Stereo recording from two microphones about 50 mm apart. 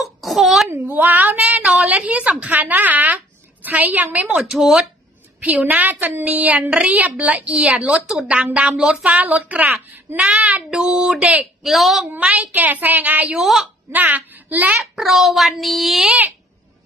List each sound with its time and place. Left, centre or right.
0.0 s a sound: centre
0.7 s a woman's voice: right
4.4 s speech: centre
5.7 s a woman's voice: right
10.1 s a woman's voice: right; by 12.0 s centre
12.2 s a woman's voice: right
13.4 s speech: centre
13.9 s a woman's voice: right
14.8 s speech: centre
16.1 s a woman's voice: right